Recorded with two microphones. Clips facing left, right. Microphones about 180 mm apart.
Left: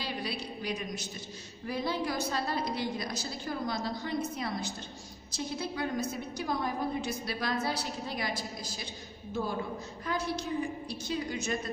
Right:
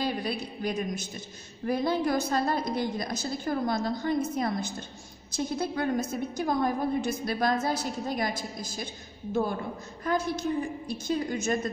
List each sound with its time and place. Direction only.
0.0 s a woman's voice: 50° right (ahead or behind)
10.0 s a woman's voice: 50° right (ahead or behind)